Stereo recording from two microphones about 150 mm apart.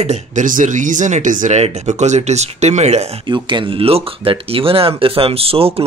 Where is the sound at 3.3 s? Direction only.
30° right (ahead or behind).